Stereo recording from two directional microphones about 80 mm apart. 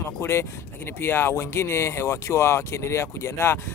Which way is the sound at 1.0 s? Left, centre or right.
Left.